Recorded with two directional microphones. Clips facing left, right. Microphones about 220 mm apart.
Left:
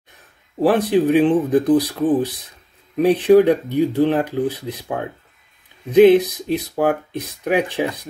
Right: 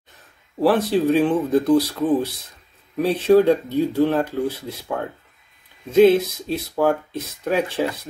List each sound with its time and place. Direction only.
0.6 s speech: 15° left (ahead or behind)